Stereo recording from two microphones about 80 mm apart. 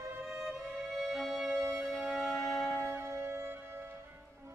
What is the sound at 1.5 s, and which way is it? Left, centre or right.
Music, right.